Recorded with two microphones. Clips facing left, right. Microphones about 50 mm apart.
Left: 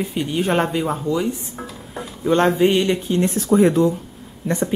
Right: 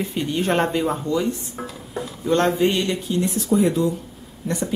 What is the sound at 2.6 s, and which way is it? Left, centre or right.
Speech, centre.